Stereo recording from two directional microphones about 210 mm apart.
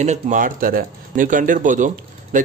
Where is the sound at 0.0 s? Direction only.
35° right (ahead or behind).